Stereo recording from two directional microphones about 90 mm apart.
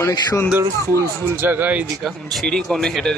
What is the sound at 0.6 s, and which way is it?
Speech, 25° right (ahead or behind).